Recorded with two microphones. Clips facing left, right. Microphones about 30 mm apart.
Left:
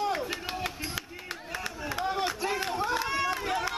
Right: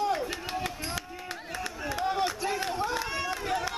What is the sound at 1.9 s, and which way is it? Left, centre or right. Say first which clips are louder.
Run: right 1 dB; centre.